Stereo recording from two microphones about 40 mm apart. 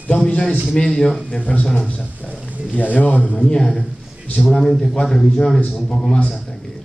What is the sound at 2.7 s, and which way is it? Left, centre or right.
Speech, left.